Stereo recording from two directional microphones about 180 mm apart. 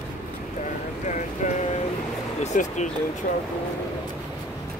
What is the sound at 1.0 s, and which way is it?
Boat, 45° left (ahead or behind).